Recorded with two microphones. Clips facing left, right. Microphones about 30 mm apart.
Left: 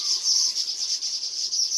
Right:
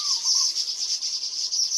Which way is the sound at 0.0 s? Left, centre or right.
Centre.